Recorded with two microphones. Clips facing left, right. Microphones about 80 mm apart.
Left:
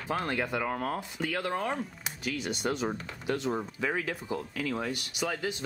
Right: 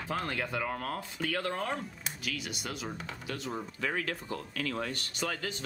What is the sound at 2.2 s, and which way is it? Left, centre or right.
Speech, left.